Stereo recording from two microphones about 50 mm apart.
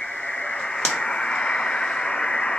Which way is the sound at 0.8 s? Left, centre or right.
Centre.